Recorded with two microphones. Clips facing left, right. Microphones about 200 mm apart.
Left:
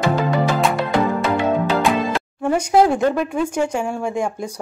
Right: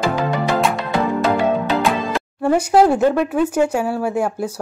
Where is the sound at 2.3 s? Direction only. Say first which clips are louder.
Right 2 dB; 5° right (ahead or behind).